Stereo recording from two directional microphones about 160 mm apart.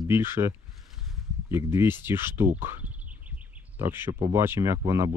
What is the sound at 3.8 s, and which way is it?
Speech, 15° right (ahead or behind).